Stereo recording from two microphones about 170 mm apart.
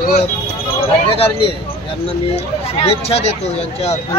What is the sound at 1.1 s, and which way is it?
Speech, 35° left (ahead or behind).